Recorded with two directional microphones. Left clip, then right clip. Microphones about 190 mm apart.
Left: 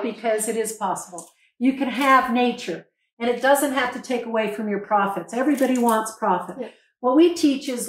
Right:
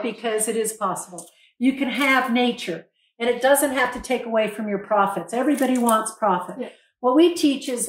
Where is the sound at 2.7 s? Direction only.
15° right (ahead or behind).